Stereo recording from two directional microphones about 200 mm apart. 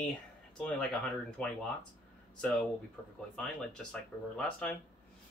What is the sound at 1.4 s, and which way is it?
Speech, 5° left (ahead or behind).